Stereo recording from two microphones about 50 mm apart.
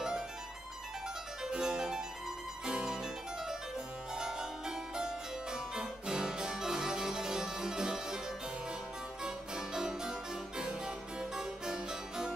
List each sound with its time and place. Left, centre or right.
1.4 s harpsichord: centre
9.2 s harpsichord: centre